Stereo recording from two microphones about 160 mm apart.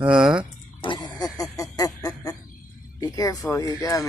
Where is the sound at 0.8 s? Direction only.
30° left (ahead or behind).